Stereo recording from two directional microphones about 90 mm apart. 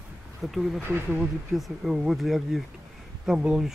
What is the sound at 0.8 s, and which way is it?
Speech, 25° right (ahead or behind).